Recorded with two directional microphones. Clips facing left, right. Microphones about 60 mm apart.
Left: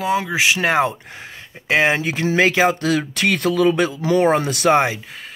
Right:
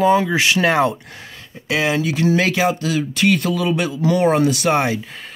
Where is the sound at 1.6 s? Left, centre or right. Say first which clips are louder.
Left 2 dB; left.